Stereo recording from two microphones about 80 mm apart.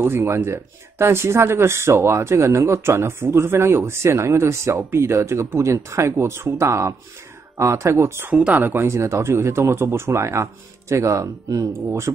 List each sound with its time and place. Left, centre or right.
0.0 s speech: right
8.3 s speech: centre
8.8 s speech: right